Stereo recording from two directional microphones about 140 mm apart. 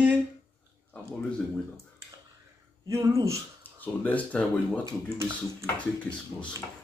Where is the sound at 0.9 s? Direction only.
10° left (ahead or behind).